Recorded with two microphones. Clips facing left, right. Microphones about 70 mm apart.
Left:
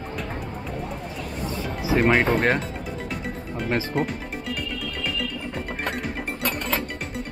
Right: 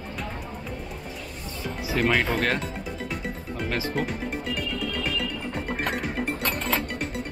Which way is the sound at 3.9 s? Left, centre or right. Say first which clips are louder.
Left 2 dB; centre.